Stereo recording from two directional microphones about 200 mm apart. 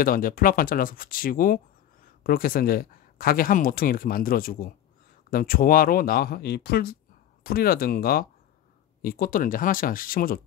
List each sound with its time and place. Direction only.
0.0 s speech: 45° left (ahead or behind)